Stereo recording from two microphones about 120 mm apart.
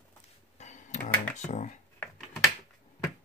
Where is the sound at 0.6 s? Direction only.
90° left.